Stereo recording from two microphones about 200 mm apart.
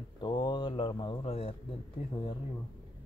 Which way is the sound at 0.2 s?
20° left (ahead or behind).